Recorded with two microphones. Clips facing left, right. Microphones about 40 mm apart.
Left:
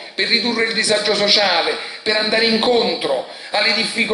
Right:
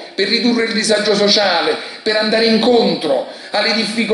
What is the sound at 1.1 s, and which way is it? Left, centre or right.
Speech, centre.